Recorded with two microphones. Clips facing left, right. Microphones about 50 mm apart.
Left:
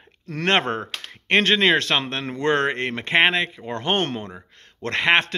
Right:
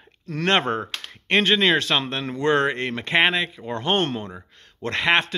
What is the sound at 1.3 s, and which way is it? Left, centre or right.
Speech, left.